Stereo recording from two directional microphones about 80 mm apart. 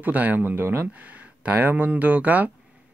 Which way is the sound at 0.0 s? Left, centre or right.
Right.